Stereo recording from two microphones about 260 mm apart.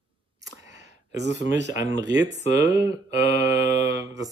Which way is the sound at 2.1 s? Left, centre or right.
Right.